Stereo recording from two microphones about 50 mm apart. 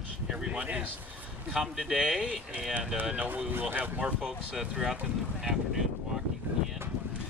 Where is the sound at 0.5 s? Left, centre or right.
Right.